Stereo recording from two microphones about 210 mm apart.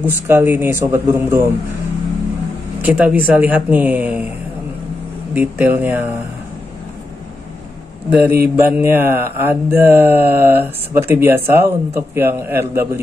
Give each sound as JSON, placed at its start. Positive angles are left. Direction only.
{"t": 0.0, "sound": "mantra", "side_deg": -10}
{"t": 2.8, "sound": "mantra", "side_deg": -5}
{"t": 5.3, "sound": "mantra", "side_deg": -10}
{"t": 8.1, "sound": "mantra", "side_deg": -10}